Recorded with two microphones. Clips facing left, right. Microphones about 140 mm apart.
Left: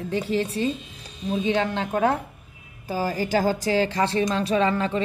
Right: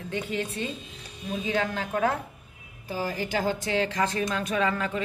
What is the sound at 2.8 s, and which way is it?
A woman's voice, 40° left (ahead or behind).